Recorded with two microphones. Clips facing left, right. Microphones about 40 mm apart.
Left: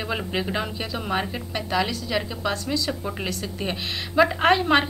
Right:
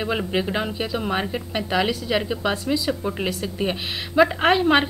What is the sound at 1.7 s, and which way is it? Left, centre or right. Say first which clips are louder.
A woman's voice: right 3 dB; centre.